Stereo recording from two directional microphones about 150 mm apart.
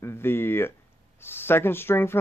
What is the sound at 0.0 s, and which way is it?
Speech, 15° left (ahead or behind).